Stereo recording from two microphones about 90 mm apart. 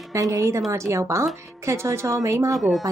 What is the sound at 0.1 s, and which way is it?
A woman's voice, 35° right (ahead or behind).